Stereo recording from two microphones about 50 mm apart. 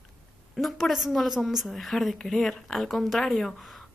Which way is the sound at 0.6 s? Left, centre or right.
Centre.